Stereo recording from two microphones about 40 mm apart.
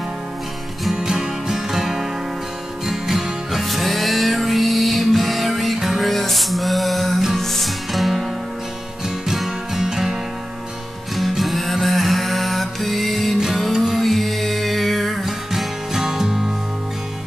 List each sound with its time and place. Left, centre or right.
0.9 s music: centre
6.0 s music: centre
9.3 s music: centre
11.1 s music: centre